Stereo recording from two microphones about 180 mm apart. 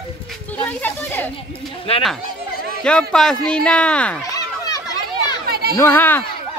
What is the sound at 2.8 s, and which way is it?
Speech, 5° left (ahead or behind).